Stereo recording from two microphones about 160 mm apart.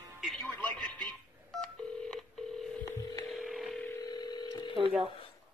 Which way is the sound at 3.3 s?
Centre (ahead or behind).